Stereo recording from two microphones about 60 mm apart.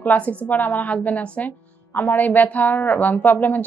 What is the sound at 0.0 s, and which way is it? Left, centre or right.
Speech, left.